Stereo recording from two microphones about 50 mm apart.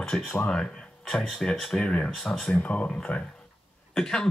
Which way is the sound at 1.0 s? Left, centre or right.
Centre.